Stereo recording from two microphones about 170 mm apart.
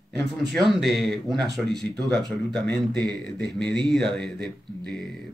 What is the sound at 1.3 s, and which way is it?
Speech, 25° right (ahead or behind).